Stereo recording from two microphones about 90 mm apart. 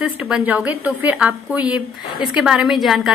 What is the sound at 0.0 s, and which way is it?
A woman's voice, 10° right (ahead or behind).